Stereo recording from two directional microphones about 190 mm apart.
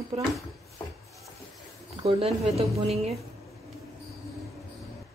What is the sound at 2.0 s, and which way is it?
Speech, 30° right (ahead or behind).